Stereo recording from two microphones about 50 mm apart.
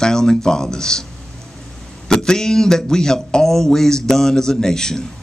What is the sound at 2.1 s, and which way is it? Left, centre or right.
A man's voice, centre.